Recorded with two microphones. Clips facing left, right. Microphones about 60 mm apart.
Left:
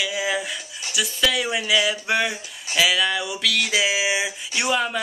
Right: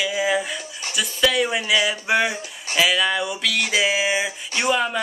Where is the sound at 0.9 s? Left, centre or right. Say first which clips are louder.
Right 2 dB; centre.